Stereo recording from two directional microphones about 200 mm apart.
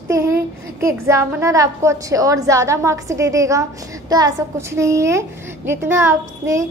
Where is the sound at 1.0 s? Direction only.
15° right (ahead or behind).